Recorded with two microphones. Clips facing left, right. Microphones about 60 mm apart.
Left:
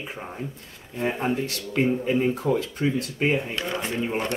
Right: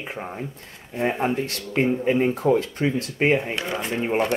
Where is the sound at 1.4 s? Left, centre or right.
Right.